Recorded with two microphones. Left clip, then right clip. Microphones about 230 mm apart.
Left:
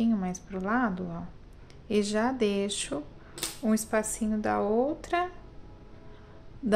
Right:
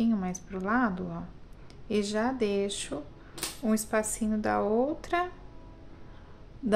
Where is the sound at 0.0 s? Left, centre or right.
Centre.